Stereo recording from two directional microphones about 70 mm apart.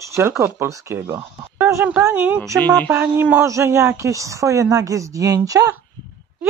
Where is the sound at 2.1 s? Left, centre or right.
Right.